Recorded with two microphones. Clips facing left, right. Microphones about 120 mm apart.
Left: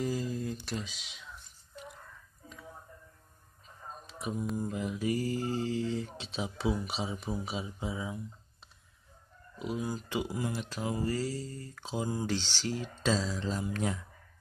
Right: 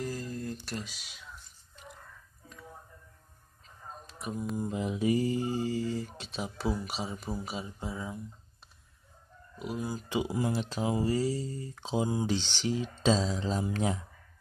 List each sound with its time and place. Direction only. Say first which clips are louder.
0.0 s a sound: left 3 dB; centre (ahead or behind)
4.0 s a sound: left 1 dB; centre (ahead or behind)
4.6 s speech: right 2 dB; 20° right (ahead or behind)
5.7 s speech: even; 5° right (ahead or behind)
9.6 s speech: even; centre (ahead or behind)
10.2 s speech: right 4 dB; 30° right (ahead or behind)